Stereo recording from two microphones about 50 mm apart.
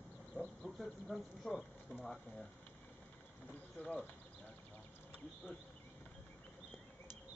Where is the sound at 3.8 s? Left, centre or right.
Left.